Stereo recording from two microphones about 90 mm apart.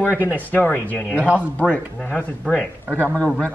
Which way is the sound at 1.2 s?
15° right (ahead or behind).